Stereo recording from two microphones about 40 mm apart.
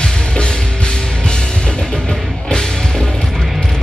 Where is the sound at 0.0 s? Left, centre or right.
Left.